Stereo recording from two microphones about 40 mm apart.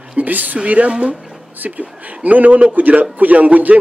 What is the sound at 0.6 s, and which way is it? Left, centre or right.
A man's voice, right.